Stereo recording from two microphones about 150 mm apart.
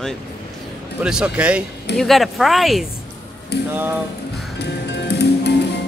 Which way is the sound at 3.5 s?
90° left.